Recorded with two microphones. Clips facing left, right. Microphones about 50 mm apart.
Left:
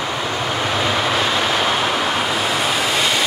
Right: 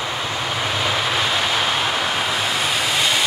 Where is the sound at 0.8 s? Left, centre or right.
Centre.